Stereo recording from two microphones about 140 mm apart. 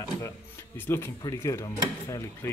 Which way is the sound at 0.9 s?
15° left (ahead or behind).